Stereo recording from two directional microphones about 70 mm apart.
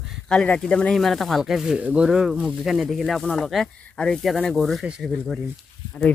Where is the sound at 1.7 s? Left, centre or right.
Centre.